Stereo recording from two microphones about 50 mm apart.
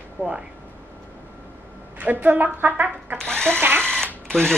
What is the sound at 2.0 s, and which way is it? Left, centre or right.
Speech, right.